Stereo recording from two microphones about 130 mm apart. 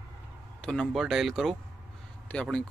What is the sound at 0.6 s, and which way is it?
Speech, 5° left (ahead or behind).